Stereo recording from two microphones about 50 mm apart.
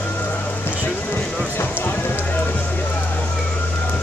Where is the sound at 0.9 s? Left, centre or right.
Left.